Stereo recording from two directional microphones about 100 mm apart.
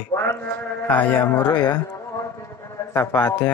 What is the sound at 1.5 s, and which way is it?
Speech, 45° left (ahead or behind).